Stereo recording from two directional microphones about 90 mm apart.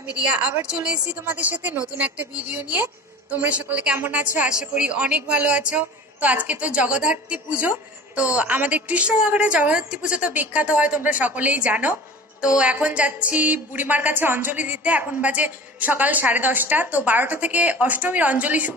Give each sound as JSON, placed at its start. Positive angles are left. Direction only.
{"t": 0.2, "sound": "a woman's voice", "side_deg": -15}